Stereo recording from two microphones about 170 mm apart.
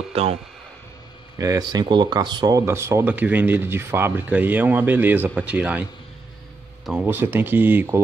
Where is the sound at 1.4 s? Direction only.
20° right (ahead or behind).